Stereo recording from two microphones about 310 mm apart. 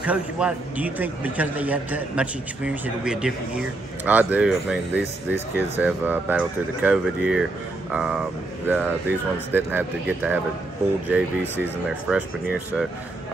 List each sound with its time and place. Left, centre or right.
0.0 s a man's voice: centre